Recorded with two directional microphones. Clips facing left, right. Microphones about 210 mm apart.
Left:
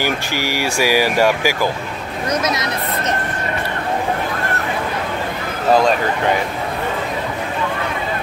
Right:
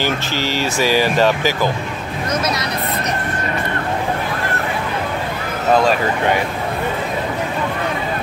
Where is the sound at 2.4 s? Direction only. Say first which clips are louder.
Even; 20° left (ahead or behind).